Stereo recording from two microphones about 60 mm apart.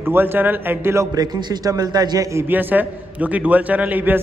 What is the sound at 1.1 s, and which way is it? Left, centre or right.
A man's voice, right.